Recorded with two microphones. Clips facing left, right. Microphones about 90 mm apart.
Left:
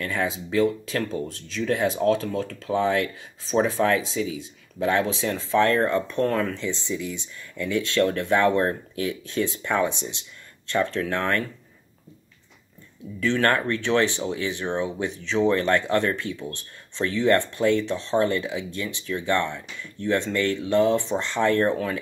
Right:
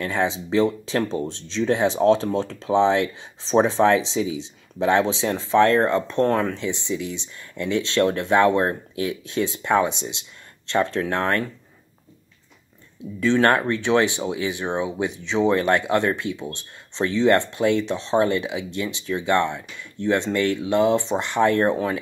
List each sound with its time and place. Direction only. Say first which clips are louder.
0.0 s speech: right 3 dB; 25° right (ahead or behind)
13.2 s speech: right 4 dB; 20° right (ahead or behind)